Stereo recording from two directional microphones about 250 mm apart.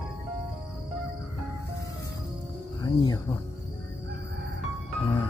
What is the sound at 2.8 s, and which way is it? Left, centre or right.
Speech, centre.